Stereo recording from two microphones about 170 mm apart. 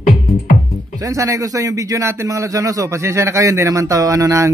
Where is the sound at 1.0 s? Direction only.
20° right (ahead or behind).